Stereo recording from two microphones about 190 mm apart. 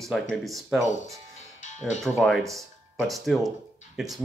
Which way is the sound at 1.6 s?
40° left (ahead or behind).